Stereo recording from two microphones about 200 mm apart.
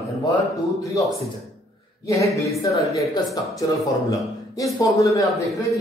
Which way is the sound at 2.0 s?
15° left (ahead or behind).